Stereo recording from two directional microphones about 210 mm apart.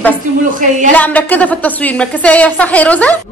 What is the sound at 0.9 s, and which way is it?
Speech, 5° left (ahead or behind).